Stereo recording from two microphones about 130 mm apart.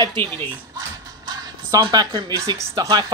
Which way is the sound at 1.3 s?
30° right (ahead or behind).